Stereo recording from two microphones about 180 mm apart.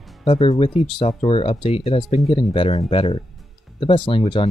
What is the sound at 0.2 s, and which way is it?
Speech, 35° left (ahead or behind).